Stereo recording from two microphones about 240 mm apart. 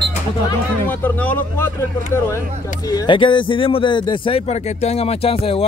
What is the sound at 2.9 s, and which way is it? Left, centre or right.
Speech, centre.